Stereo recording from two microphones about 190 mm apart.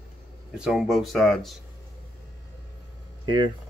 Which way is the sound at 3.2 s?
25° right (ahead or behind).